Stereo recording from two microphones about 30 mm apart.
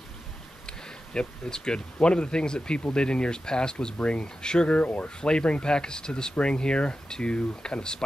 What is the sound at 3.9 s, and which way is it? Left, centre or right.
Speech, left.